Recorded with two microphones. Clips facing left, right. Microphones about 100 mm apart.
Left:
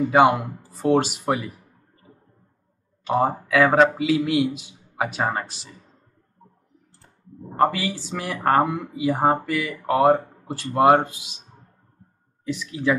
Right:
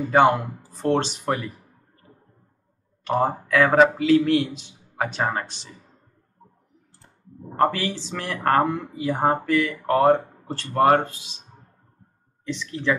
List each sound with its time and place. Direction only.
0.1 s speech: 10° left (ahead or behind)
3.1 s speech: 10° left (ahead or behind)
7.7 s speech: 5° left (ahead or behind)
12.4 s speech: 5° left (ahead or behind)